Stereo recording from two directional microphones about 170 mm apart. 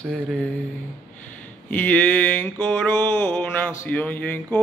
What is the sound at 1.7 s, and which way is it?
Mantra, 10° left (ahead or behind).